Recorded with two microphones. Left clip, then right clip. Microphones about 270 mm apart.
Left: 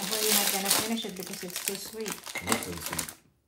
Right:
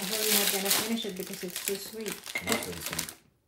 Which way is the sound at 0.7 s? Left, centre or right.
Centre.